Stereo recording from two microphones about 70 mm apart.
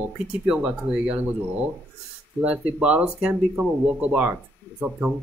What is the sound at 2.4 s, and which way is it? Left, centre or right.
Speech, centre.